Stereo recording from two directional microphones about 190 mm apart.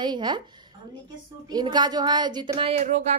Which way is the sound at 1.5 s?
20° right (ahead or behind).